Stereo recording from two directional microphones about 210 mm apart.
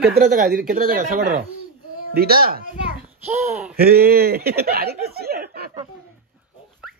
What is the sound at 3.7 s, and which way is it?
Speech, 45° right (ahead or behind).